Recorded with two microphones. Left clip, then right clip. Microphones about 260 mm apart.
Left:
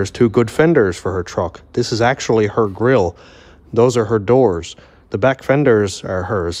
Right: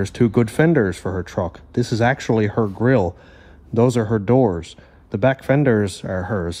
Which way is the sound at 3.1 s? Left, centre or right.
Left.